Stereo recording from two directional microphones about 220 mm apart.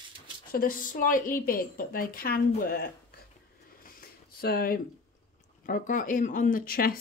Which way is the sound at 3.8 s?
45° left (ahead or behind).